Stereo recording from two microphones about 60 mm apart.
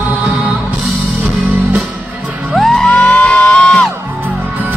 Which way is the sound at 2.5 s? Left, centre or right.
Centre.